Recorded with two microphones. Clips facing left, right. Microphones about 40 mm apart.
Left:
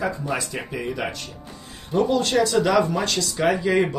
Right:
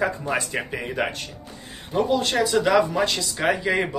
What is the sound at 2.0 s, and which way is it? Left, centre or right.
Speech, centre.